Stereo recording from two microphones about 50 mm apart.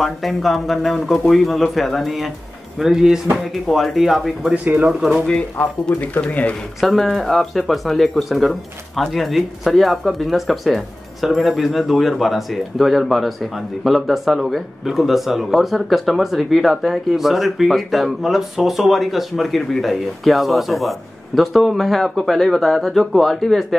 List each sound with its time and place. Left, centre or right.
0.0 s speech: centre
6.2 s speech: left
6.8 s speech: centre